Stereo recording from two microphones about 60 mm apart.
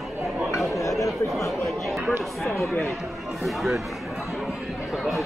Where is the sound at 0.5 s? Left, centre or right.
Left.